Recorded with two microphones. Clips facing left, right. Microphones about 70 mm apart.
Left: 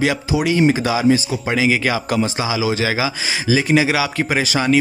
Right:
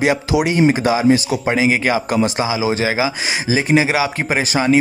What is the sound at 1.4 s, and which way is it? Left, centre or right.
A man's voice, right.